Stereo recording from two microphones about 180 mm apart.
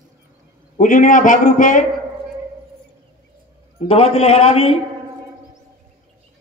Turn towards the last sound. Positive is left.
turn(degrees=35)  # may be behind; listen again after turning